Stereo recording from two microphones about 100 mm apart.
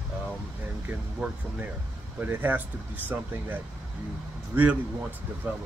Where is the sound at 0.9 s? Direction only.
15° right (ahead or behind).